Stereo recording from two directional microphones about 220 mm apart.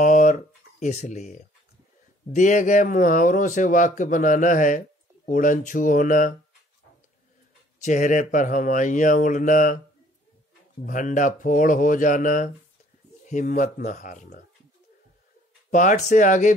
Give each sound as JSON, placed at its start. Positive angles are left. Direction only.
{"t": 0.0, "sound": "a sound", "side_deg": 35}
{"t": 2.3, "sound": "speech", "side_deg": 35}
{"t": 7.8, "sound": "speech", "side_deg": 35}
{"t": 10.8, "sound": "speech", "side_deg": 35}
{"t": 15.7, "sound": "speech", "side_deg": 35}